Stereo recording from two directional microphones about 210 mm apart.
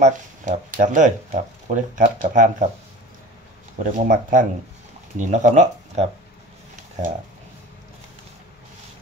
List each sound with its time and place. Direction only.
0.0 s speech: 35° right (ahead or behind)
3.8 s speech: 40° right (ahead or behind)